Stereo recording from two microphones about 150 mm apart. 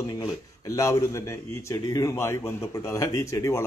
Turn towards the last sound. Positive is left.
turn(degrees=20)  # may be behind; listen again after turning